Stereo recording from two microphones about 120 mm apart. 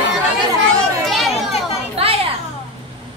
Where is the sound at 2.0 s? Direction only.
55° right (ahead or behind).